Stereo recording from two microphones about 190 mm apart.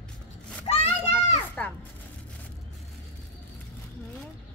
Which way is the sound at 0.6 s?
35° left (ahead or behind).